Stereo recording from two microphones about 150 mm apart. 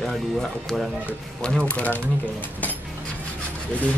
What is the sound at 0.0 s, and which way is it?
Speech, 5° left (ahead or behind).